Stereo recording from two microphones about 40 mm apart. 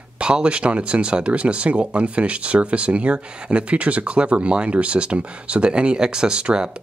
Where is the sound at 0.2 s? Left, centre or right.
Right.